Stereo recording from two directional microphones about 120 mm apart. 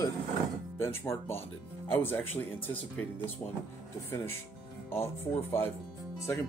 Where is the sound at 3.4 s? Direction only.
30° left (ahead or behind).